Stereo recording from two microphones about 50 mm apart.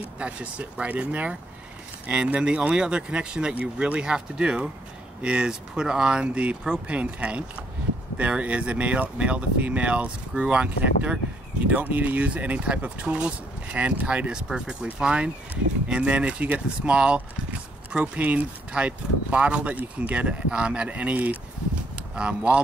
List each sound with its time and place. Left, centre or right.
0.2 s speech: right
11.6 s speech: right